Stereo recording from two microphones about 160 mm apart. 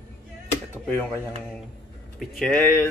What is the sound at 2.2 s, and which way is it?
Speech, 5° left (ahead or behind).